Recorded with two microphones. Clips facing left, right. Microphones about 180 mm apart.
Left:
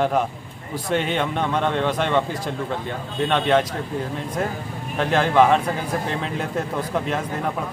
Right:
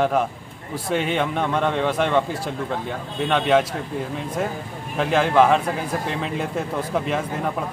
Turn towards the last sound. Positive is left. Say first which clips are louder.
# right 1 dB
turn(degrees=0)  # may be behind; listen again after turning